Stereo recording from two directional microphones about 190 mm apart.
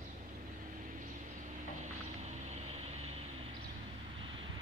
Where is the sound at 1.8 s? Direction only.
35° right (ahead or behind).